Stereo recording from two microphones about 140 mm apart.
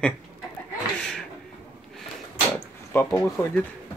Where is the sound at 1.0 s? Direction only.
5° left (ahead or behind).